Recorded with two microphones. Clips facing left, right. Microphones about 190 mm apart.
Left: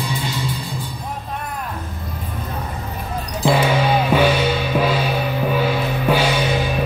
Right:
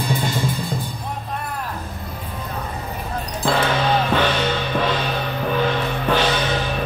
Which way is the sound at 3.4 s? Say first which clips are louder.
Left 3 dB; 10° left (ahead or behind).